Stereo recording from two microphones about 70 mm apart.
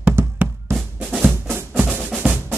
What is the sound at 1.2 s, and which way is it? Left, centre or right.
Percussion, right.